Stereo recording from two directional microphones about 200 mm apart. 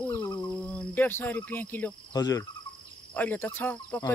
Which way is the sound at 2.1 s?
20° left (ahead or behind).